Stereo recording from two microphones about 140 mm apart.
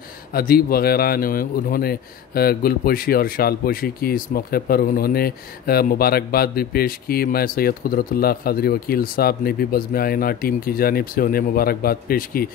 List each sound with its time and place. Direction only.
0.3 s speech: 90° left